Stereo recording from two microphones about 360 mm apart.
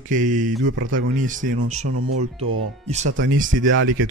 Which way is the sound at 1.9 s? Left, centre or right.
Right.